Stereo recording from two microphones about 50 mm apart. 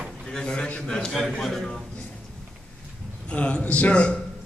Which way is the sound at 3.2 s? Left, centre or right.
Left.